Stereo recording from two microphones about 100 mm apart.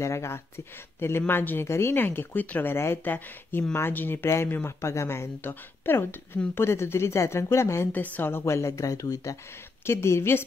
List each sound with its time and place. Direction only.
0.0 s speech: 30° left (ahead or behind)